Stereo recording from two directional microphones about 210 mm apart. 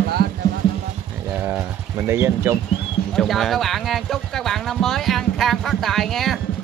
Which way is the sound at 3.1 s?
Centre (ahead or behind).